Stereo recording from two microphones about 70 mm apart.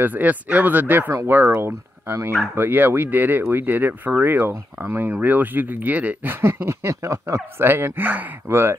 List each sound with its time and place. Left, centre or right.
0.0 s speech: right
2.5 s speech: right
7.6 s speech: right